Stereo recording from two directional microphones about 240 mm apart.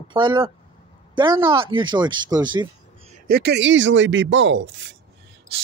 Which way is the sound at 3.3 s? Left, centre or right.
Right.